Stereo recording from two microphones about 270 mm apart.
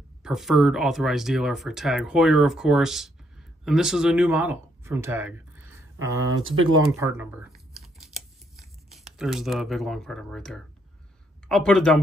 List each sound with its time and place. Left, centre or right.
0.2 s speech: centre
6.4 s speech: right
7.0 s scissors: centre
11.4 s speech: centre